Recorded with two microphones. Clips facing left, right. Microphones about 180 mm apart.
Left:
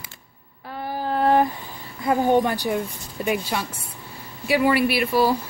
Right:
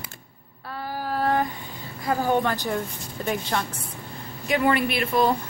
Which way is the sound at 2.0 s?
20° left (ahead or behind).